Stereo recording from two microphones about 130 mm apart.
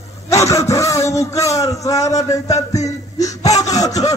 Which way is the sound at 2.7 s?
25° left (ahead or behind).